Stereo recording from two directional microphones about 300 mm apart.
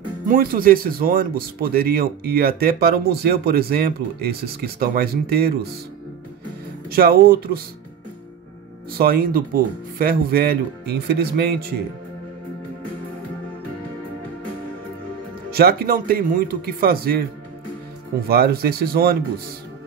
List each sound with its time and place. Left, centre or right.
0.3 s speech: right
6.9 s speech: right
8.9 s speech: right
15.5 s speech: right
18.3 s speech: right